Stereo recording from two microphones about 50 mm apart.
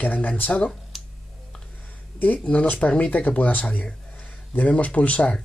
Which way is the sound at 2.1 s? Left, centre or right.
Left.